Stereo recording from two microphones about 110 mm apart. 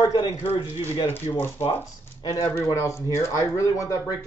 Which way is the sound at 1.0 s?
20° left (ahead or behind).